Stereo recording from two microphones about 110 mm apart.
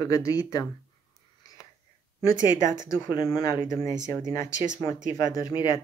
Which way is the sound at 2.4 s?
30° left (ahead or behind).